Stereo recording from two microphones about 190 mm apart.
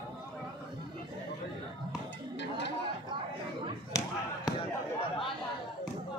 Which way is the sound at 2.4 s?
65° left (ahead or behind).